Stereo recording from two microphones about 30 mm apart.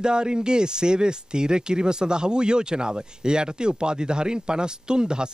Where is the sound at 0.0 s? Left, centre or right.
Right.